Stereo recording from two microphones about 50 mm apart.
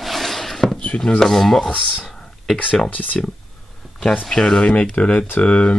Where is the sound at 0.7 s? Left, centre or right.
Left.